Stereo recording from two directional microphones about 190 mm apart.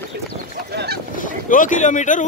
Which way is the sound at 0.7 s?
60° right (ahead or behind).